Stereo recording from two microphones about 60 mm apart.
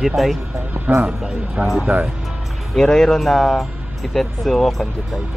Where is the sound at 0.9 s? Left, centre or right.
Right.